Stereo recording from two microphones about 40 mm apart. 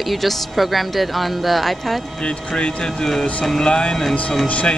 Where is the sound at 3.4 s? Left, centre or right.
Centre.